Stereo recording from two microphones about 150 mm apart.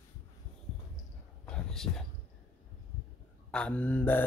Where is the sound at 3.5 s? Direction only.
10° left (ahead or behind).